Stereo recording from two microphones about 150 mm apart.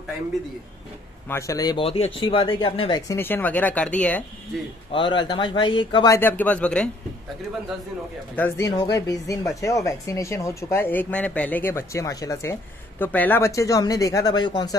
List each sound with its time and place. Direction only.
1.3 s speech: 25° left (ahead or behind)
1.8 s speech: 40° left (ahead or behind)
3.1 s speech: 15° left (ahead or behind)
4.9 s speech: 30° left (ahead or behind)
6.0 s speech: 15° left (ahead or behind)
8.4 s speech: 20° left (ahead or behind)